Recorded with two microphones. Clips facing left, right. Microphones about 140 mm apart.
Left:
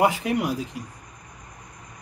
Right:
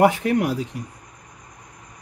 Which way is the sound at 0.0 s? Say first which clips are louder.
Right 4 dB; 65° right (ahead or behind).